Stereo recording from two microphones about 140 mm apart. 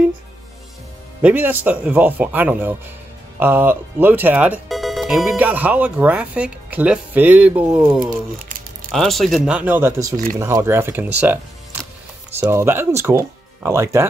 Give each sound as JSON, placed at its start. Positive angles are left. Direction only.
{"t": 1.2, "sound": "speech", "side_deg": -10}
{"t": 12.4, "sound": "speech", "side_deg": -15}